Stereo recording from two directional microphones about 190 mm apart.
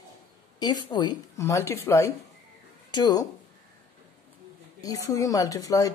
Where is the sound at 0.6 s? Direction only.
20° left (ahead or behind).